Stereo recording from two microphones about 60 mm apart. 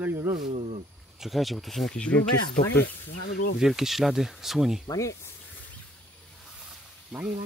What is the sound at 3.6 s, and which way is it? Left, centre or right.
Speech, centre.